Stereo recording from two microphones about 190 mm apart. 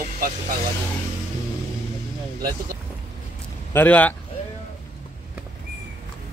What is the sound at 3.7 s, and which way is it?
Speech, 10° left (ahead or behind).